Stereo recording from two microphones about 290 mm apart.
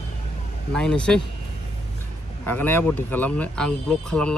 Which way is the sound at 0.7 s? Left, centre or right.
Centre.